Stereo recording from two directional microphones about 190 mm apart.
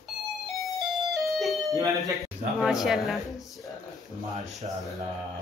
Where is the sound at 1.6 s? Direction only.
20° right (ahead or behind).